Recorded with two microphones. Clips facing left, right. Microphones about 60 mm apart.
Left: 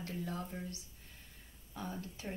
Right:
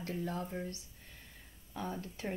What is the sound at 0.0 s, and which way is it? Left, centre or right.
Speech, right.